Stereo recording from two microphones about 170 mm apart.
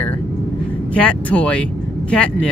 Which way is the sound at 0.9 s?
10° left (ahead or behind).